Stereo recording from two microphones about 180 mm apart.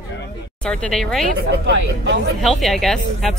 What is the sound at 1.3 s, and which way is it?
Speech, 70° right (ahead or behind).